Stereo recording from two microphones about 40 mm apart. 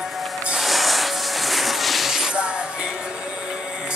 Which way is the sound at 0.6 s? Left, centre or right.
Centre.